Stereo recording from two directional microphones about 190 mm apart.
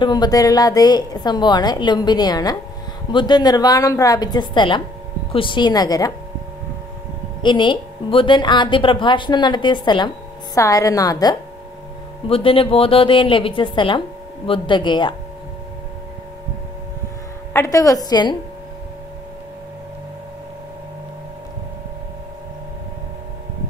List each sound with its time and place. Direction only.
0.0 s a woman's voice: 20° left (ahead or behind)
7.4 s a woman's voice: 25° left (ahead or behind)
17.5 s a woman's voice: 15° left (ahead or behind)